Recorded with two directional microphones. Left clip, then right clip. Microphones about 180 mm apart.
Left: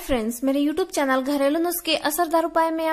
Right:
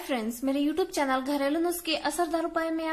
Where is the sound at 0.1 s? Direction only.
30° left (ahead or behind).